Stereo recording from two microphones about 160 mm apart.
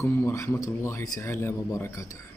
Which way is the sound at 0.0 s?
20° left (ahead or behind).